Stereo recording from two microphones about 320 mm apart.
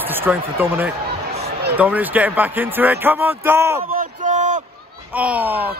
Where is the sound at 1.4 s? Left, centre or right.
Right.